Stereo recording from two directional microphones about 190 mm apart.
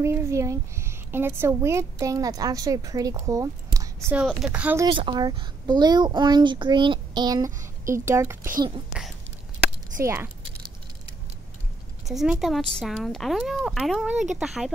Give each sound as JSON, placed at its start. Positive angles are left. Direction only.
{"t": 0.0, "sound": "speech", "side_deg": -15}
{"t": 4.2, "sound": "speech", "side_deg": -5}
{"t": 4.9, "sound": "speech", "side_deg": -25}
{"t": 8.5, "sound": "speech", "side_deg": -25}
{"t": 10.0, "sound": "speech", "side_deg": -10}
{"t": 12.1, "sound": "speech", "side_deg": 0}